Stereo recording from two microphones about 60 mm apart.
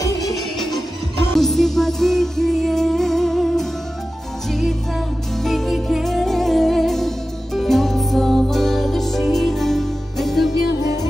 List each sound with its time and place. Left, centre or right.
0.0 s music: left
1.3 s music: centre